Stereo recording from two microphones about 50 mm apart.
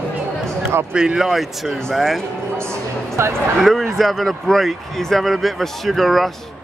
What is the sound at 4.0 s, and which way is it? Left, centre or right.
Speech, centre.